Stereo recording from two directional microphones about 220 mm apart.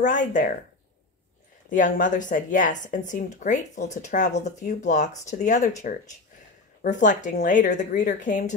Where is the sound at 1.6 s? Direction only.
35° left (ahead or behind).